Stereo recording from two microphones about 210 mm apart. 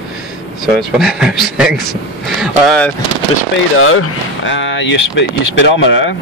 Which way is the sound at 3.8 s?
75° left (ahead or behind).